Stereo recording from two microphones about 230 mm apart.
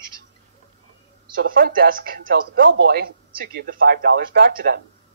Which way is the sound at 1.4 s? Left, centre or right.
Right.